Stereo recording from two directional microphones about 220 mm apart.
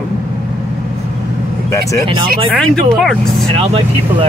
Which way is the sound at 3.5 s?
25° right (ahead or behind).